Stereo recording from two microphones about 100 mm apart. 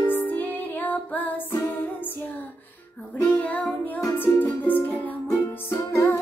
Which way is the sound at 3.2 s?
10° left (ahead or behind).